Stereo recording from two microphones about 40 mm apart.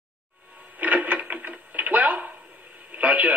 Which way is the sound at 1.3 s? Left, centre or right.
Right.